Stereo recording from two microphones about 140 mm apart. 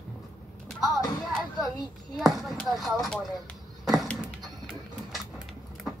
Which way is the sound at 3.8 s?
Centre (ahead or behind).